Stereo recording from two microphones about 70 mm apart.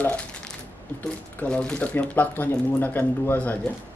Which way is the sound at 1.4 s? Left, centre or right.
Centre.